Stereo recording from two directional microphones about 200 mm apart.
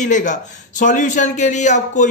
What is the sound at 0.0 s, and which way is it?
A man's voice, 40° left (ahead or behind).